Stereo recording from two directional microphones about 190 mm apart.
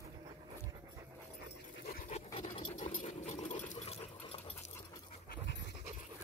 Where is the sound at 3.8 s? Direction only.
30° left (ahead or behind).